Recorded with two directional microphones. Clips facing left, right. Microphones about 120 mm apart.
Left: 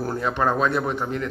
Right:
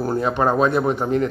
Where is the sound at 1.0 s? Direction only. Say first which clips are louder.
Right 7 dB; 30° right (ahead or behind).